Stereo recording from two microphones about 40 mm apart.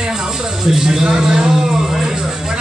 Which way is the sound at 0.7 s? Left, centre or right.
Centre.